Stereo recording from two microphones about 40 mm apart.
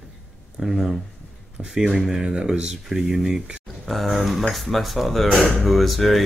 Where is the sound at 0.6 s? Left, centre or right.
Centre.